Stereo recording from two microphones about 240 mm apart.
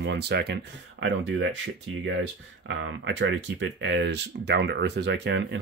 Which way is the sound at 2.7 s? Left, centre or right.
Right.